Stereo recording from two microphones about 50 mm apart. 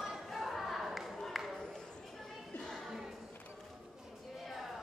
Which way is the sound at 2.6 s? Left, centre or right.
Centre.